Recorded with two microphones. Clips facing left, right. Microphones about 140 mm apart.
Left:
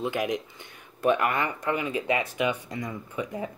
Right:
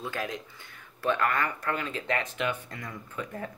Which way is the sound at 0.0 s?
15° left (ahead or behind).